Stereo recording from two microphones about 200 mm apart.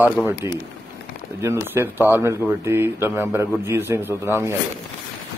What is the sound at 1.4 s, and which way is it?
Speech, 10° right (ahead or behind).